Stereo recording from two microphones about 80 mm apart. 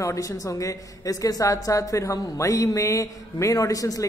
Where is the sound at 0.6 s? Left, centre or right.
Left.